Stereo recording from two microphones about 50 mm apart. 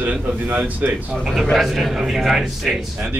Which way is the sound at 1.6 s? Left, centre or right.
Centre.